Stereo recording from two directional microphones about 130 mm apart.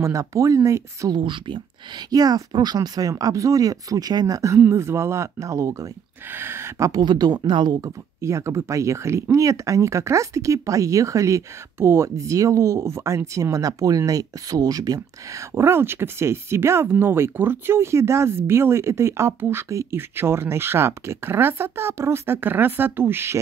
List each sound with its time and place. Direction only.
0.0 s speech: 25° right (ahead or behind)
1.1 s speech: 40° right (ahead or behind)
8.2 s speech: 20° right (ahead or behind)